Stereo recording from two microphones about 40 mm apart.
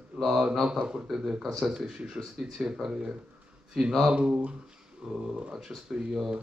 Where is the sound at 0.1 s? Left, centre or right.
Right.